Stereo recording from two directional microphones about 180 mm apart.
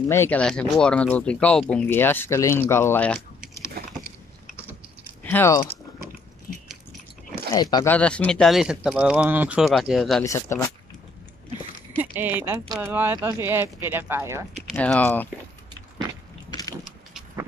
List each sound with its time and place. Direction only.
0.1 s speech: 10° left (ahead or behind)
3.8 s a sound: 60° right (ahead or behind)
5.2 s speech: 10° left (ahead or behind)
7.7 s speech: 10° left (ahead or behind)
10.2 s speech: 15° left (ahead or behind)
12.0 s speech: 10° right (ahead or behind)
14.7 s speech: 5° left (ahead or behind)
16.4 s vehicle: 20° left (ahead or behind)